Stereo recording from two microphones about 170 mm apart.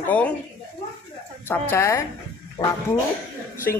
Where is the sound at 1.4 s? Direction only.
15° left (ahead or behind).